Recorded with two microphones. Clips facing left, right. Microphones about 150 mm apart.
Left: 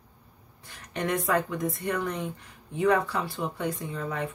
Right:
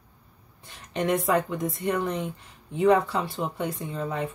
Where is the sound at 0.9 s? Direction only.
25° right (ahead or behind).